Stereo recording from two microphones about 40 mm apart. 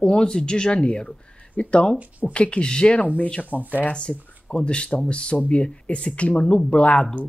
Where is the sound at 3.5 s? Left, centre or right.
Left.